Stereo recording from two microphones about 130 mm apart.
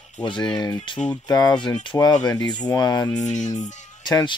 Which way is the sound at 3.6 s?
35° left (ahead or behind).